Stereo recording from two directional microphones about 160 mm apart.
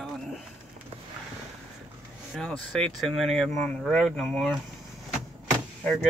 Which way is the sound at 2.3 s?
5° left (ahead or behind).